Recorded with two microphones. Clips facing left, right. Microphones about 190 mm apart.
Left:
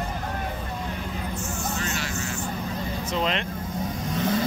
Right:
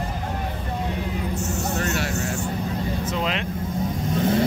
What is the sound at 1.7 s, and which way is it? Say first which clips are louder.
Vehicle: right 5 dB; 60° right (ahead or behind).